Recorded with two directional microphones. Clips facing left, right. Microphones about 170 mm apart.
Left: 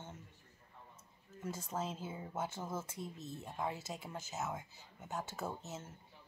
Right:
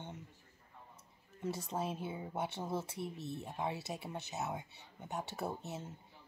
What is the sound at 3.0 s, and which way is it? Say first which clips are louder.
Speech: right 4 dB; 70° right (ahead or behind).